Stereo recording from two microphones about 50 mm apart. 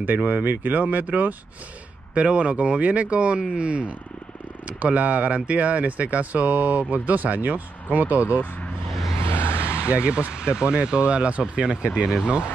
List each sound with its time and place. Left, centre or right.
0.0 s speech: right
9.2 s vehicle: left
9.8 s speech: right